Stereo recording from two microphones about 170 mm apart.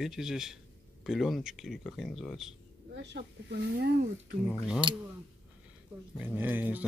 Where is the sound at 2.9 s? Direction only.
90° right.